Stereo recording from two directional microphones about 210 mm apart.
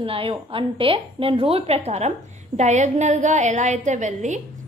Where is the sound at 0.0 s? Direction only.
25° right (ahead or behind).